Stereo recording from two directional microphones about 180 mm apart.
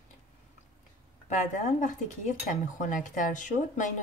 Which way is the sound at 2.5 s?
45° left (ahead or behind).